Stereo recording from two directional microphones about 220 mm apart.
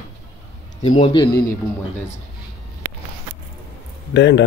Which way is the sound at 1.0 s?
20° left (ahead or behind).